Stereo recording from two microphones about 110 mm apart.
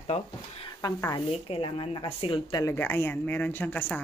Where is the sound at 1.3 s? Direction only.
60° left (ahead or behind).